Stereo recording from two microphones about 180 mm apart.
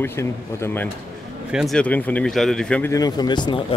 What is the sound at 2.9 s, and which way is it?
Speech, 20° left (ahead or behind).